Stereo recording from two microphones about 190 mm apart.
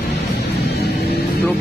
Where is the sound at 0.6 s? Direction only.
60° left (ahead or behind).